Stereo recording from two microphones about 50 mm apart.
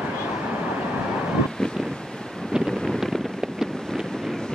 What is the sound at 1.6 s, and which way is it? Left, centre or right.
Wind noise, centre.